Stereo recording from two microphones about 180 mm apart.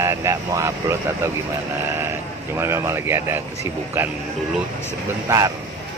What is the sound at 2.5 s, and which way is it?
Speech, 15° right (ahead or behind).